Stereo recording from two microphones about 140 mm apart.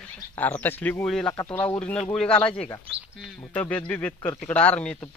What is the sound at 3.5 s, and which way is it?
Speech, 10° left (ahead or behind).